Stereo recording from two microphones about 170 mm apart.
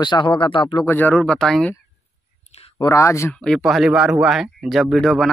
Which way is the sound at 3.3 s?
5° left (ahead or behind).